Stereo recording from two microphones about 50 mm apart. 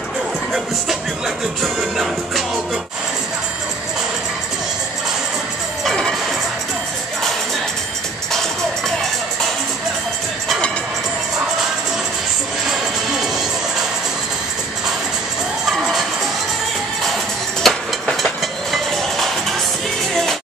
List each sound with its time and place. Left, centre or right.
0.5 s music: centre
17.6 s train: centre
18.1 s music: centre